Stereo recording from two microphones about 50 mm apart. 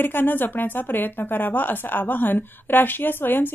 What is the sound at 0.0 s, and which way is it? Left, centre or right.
A woman's voice, left.